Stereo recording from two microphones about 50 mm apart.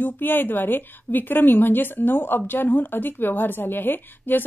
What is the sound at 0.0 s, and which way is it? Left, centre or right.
A woman's voice, left.